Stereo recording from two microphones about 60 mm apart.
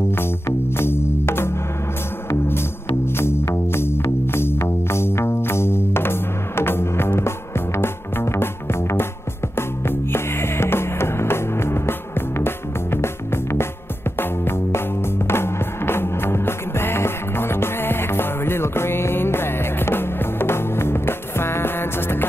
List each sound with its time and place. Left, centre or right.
0.1 s music: left
3.2 s music: left